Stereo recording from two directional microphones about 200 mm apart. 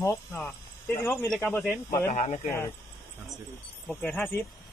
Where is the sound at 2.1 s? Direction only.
35° left (ahead or behind).